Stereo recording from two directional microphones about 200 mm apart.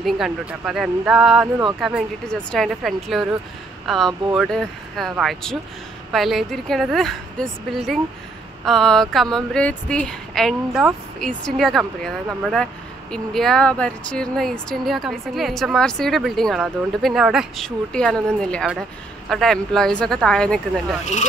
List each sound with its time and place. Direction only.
0.0 s speech: centre (ahead or behind)
21.0 s speech: 35° left (ahead or behind)